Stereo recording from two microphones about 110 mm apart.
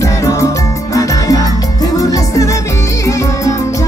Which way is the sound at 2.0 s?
30° left (ahead or behind).